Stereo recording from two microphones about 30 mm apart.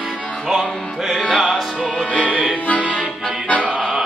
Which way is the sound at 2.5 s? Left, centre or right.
Left.